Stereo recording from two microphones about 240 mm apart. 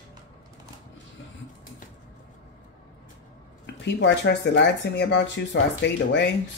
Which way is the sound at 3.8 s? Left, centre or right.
Left.